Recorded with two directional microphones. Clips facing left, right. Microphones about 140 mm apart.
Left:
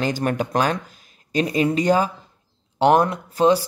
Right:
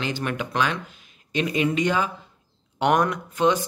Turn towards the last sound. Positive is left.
turn(degrees=35)  # may be behind; listen again after turning